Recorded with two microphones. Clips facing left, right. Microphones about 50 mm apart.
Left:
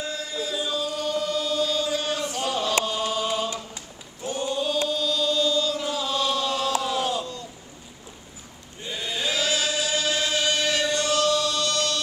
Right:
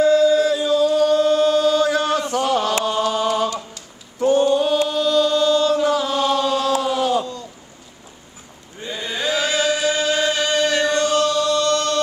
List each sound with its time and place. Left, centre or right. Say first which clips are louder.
0.0 s choir: right 17 dB; right
2.3 s chant: right 5 dB; right
5.8 s chant: right 8 dB; right
6.2 s chant: right 6 dB; right
8.9 s chant: right 5 dB; right